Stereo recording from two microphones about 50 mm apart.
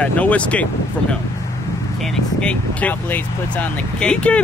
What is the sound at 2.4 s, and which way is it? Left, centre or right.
Speech, left.